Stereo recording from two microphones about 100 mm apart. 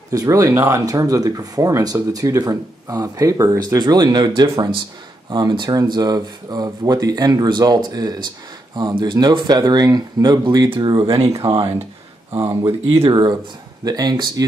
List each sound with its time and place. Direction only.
0.1 s speech: 35° right (ahead or behind); by 11.7 s 50° right (ahead or behind)
12.4 s speech: 30° right (ahead or behind)
13.1 s speech: 45° right (ahead or behind)